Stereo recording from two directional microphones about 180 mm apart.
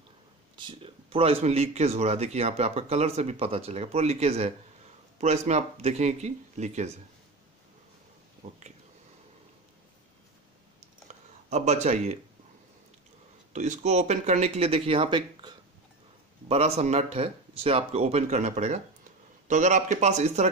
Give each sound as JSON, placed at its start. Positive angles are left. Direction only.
{"t": 0.6, "sound": "speech", "side_deg": -30}
{"t": 8.4, "sound": "speech", "side_deg": -40}
{"t": 11.5, "sound": "speech", "side_deg": -40}
{"t": 13.5, "sound": "speech", "side_deg": -40}